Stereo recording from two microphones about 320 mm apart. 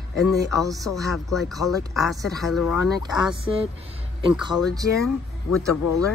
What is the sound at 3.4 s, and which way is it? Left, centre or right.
Speech, centre.